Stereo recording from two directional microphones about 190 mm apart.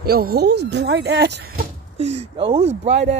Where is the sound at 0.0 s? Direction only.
55° right (ahead or behind).